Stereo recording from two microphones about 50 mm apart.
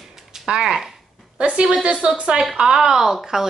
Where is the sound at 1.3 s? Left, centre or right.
Right.